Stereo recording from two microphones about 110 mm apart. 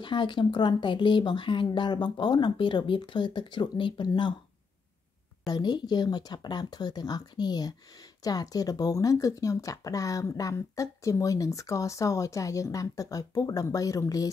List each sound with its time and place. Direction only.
0.0 s speech: 45° left (ahead or behind)
5.5 s speech: 40° left (ahead or behind)